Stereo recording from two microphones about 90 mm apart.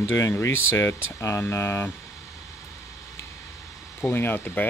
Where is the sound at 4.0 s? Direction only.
20° left (ahead or behind).